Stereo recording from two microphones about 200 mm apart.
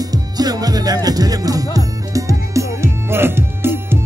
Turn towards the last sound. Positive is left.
turn(degrees=-10)  # may be behind; listen again after turning